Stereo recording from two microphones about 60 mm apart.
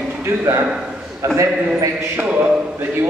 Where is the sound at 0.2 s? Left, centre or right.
Right.